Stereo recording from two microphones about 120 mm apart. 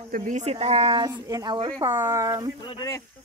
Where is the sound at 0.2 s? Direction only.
80° right; by 1.9 s 40° right (ahead or behind).